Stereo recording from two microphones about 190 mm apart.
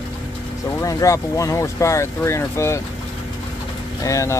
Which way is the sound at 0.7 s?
15° left (ahead or behind).